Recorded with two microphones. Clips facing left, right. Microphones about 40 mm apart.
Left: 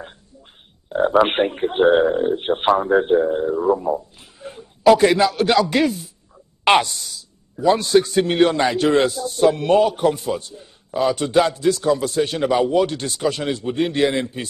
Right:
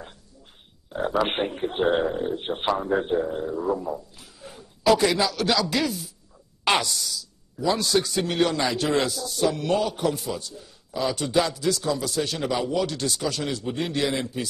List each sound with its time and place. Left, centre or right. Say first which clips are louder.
0.9 s a man's voice: left 8 dB; left